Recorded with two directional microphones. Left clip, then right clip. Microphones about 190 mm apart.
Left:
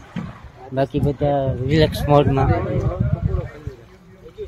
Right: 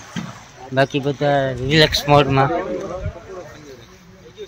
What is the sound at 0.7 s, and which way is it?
Speech, 15° right (ahead or behind).